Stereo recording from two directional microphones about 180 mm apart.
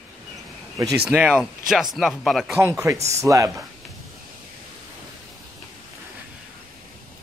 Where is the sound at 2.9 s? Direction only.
40° right (ahead or behind).